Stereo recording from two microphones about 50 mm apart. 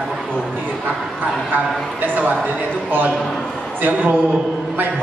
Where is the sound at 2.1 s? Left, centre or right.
Right.